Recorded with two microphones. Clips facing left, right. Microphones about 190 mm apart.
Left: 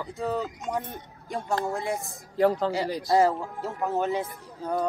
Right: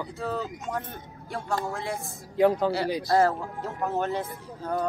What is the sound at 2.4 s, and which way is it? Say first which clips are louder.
Speech: right 1 dB; centre (ahead or behind).